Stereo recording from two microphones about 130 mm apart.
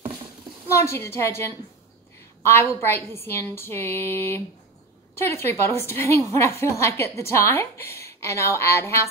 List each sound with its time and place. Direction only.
0.7 s a woman's voice: 20° left (ahead or behind)